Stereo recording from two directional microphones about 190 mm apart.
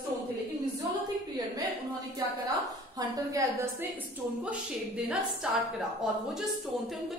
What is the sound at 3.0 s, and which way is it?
Speech, 15° right (ahead or behind).